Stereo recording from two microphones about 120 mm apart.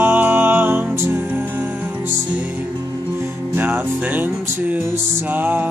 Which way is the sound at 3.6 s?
15° right (ahead or behind).